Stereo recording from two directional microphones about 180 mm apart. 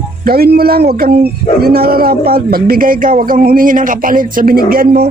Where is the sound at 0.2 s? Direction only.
55° right (ahead or behind).